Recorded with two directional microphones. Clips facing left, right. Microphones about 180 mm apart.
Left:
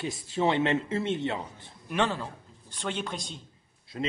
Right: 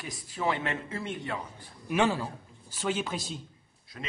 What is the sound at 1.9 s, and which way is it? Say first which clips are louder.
Speech: right 2 dB; 10° right (ahead or behind).